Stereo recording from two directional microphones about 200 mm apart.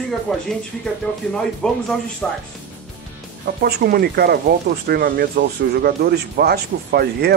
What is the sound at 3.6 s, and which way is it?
Speech, 50° right (ahead or behind).